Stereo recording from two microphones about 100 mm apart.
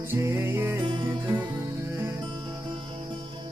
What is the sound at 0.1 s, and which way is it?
Music, 25° right (ahead or behind).